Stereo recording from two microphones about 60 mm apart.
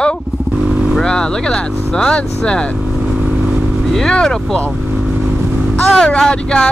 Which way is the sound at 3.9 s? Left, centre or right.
Centre.